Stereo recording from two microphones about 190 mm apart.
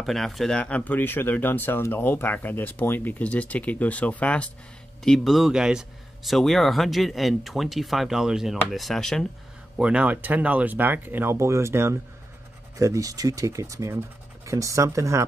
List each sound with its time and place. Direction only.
0.0 s speech: centre (ahead or behind); by 15.2 s 15° right (ahead or behind)